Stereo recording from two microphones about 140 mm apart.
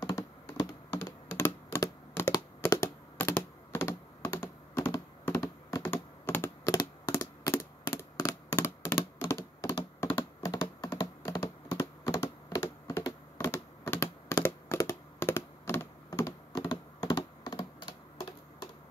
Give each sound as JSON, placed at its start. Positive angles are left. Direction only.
{"t": 0.0, "sound": "computer keyboard", "side_deg": 30}
{"t": 7.1, "sound": "a sound", "side_deg": 25}
{"t": 10.0, "sound": "computer keyboard", "side_deg": 30}